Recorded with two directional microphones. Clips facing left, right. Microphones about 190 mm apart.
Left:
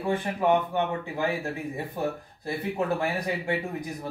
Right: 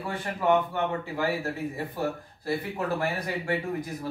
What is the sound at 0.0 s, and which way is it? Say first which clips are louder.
Speech: left 3 dB; 20° left (ahead or behind).